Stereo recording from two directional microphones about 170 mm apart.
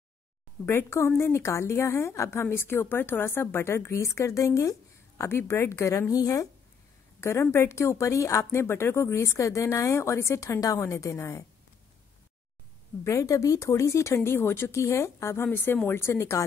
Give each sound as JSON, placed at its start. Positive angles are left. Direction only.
{"t": 0.7, "sound": "a woman's voice", "side_deg": 15}
{"t": 13.0, "sound": "a woman's voice", "side_deg": 20}